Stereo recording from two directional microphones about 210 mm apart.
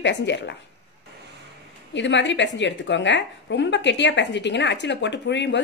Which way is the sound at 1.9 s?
60° left (ahead or behind).